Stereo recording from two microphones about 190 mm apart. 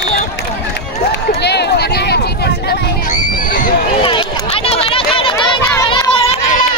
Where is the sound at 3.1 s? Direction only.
45° left (ahead or behind).